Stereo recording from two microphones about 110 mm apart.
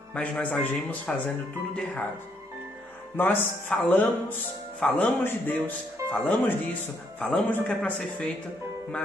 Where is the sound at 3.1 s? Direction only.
15° left (ahead or behind).